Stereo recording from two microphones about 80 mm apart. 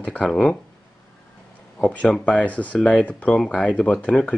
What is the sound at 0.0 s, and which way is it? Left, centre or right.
Speech, centre.